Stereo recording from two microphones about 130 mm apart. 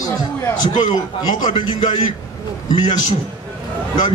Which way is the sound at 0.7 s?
35° left (ahead or behind).